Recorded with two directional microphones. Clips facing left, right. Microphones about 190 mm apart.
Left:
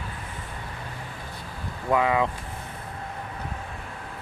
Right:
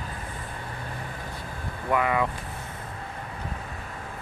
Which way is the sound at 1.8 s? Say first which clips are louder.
Left 2 dB; 20° left (ahead or behind).